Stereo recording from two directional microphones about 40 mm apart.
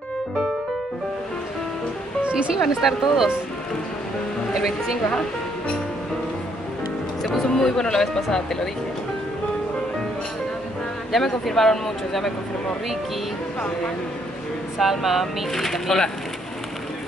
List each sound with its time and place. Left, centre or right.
2.2 s music: right
2.8 s speech: centre
4.6 s speech: centre
7.2 s speech: centre
11.1 s speech: centre
14.8 s speech: centre